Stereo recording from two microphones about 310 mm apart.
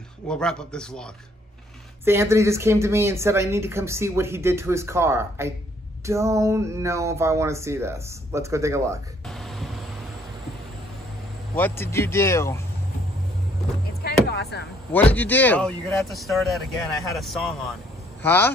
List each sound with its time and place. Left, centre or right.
0.3 s speech: centre
2.0 s speech: centre
9.2 s a sound: centre
11.5 s speech: centre
14.0 s music: left
14.9 s speech: centre